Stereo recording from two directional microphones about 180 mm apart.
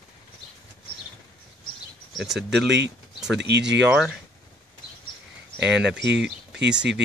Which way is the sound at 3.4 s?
70° right (ahead or behind).